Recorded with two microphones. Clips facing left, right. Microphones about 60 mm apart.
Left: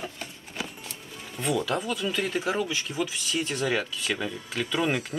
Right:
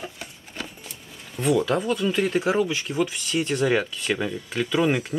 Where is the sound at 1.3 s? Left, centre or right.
Centre.